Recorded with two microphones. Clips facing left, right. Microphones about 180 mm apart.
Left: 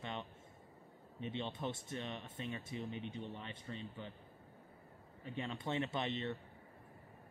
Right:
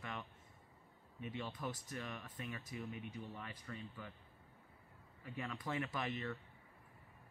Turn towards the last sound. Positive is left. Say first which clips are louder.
# left 3 dB
turn(degrees=25)  # may be behind; listen again after turning